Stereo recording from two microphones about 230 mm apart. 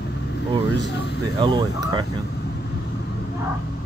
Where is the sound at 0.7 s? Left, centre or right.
Left.